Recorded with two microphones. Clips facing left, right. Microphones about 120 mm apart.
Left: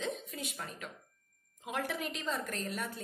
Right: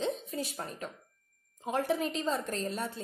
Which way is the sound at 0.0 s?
30° right (ahead or behind).